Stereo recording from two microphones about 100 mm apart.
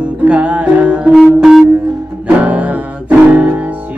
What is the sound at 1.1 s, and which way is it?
Music, centre (ahead or behind).